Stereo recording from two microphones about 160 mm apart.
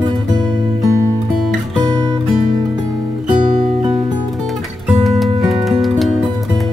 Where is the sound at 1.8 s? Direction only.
30° right (ahead or behind).